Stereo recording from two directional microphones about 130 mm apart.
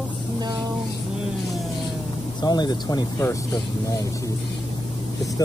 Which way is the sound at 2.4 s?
35° left (ahead or behind).